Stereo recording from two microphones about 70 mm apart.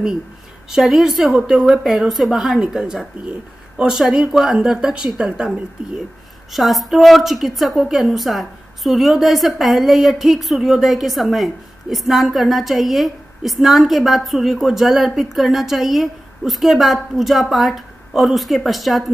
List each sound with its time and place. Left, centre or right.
0.7 s a woman's voice: centre
6.5 s a woman's voice: centre